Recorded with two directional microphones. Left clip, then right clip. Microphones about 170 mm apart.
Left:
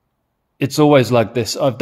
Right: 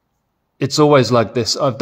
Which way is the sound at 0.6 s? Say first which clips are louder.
Even; 15° left (ahead or behind).